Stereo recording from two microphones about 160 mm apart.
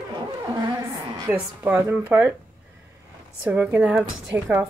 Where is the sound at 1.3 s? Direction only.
10° right (ahead or behind).